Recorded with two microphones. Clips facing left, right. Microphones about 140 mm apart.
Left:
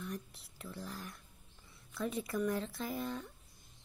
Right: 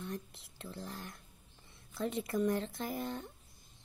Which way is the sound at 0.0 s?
25° right (ahead or behind).